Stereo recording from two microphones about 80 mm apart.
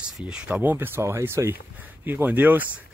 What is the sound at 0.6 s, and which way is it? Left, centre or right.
Speech, right.